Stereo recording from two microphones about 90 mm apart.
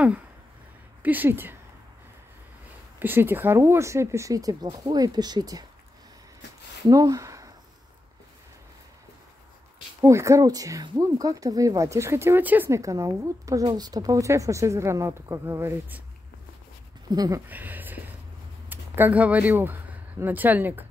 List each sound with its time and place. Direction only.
1.0 s speech: 20° right (ahead or behind)
3.0 s speech: 20° right (ahead or behind); by 5.7 s 45° right (ahead or behind)
6.9 s speech: 40° right (ahead or behind)
10.0 s speech: 35° right (ahead or behind)
12.7 s speech: 35° right (ahead or behind)
17.1 s speech: 45° right (ahead or behind)
17.5 s speech: 20° right (ahead or behind)